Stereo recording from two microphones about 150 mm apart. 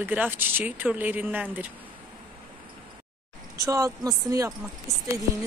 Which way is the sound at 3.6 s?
25° right (ahead or behind).